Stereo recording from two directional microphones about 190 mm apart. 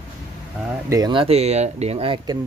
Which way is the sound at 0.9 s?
20° right (ahead or behind).